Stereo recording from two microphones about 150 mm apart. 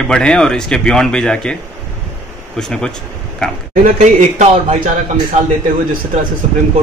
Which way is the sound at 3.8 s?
50° right (ahead or behind).